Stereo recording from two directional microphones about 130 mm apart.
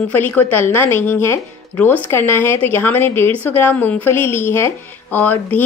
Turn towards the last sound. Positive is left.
turn(degrees=15)  # may be behind; listen again after turning